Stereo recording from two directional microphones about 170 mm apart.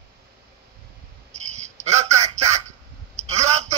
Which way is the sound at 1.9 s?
40° right (ahead or behind).